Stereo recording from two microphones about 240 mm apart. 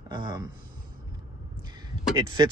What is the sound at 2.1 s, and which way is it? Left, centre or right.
Speech, centre.